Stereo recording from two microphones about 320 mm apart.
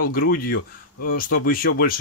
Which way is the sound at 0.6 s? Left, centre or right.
Left.